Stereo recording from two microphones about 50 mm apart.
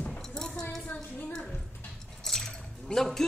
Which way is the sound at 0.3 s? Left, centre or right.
Centre.